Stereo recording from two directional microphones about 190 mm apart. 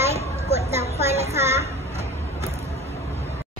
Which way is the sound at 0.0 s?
35° right (ahead or behind).